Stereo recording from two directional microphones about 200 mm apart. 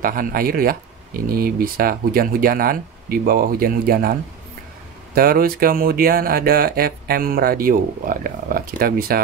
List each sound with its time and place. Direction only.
0.0 s speech: 45° right (ahead or behind)